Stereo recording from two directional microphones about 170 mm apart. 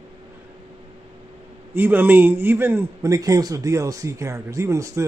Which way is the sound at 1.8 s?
10° right (ahead or behind).